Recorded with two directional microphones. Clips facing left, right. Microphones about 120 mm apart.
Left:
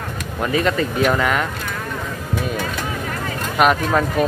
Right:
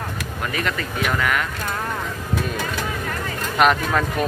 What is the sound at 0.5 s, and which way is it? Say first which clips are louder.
Speech: left 8 dB; 25° left (ahead or behind).